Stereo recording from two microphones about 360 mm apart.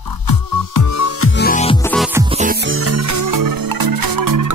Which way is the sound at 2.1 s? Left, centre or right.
Centre.